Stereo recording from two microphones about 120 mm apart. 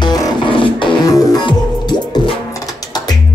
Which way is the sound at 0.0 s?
35° left (ahead or behind).